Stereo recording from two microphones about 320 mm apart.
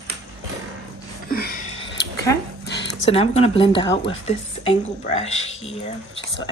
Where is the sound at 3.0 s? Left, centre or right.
Centre.